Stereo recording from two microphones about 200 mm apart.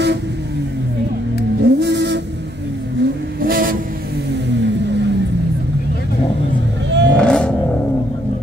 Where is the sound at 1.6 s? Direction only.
55° right (ahead or behind).